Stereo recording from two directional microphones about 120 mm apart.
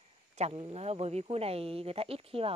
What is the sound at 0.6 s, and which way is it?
Speech, 45° right (ahead or behind).